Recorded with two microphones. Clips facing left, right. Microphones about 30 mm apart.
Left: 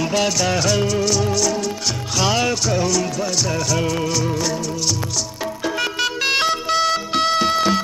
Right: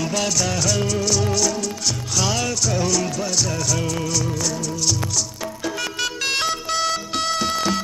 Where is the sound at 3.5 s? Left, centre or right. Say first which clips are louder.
Left 3 dB; centre.